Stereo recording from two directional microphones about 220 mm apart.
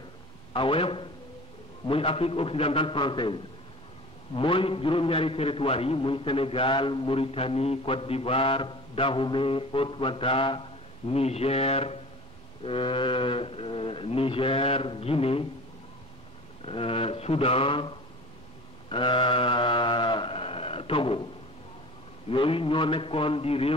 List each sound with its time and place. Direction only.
0.5 s a man's voice: 25° left (ahead or behind)
16.6 s a man's voice: 25° left (ahead or behind)
18.9 s a sound: 20° left (ahead or behind)
22.3 s a man's voice: 25° left (ahead or behind)